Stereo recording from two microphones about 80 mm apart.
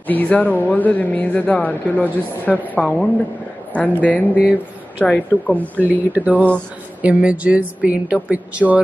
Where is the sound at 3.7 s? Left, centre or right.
Left.